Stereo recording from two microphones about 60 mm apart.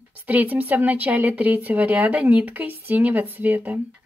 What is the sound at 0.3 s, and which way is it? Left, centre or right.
Speech, right.